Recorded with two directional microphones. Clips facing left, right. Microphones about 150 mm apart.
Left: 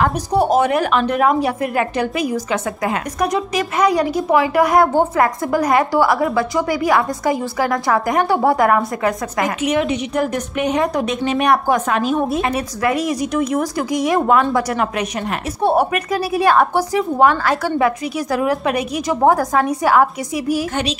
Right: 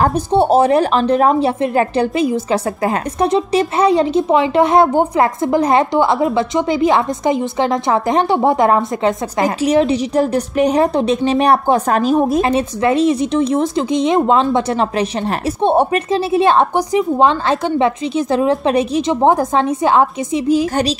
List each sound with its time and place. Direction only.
0.0 s speech: 30° right (ahead or behind)